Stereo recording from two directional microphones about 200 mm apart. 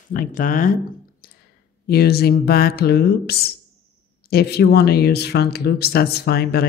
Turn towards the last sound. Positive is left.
turn(degrees=50)  # may be behind; listen again after turning